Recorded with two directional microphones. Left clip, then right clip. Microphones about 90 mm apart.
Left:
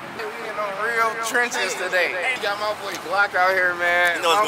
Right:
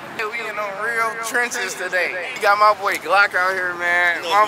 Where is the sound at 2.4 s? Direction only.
40° right (ahead or behind).